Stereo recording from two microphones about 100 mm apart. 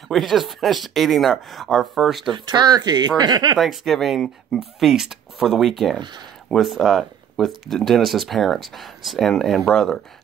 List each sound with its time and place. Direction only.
0.1 s speech: centre (ahead or behind)
2.3 s speech: 45° right (ahead or behind)
3.5 s speech: centre (ahead or behind)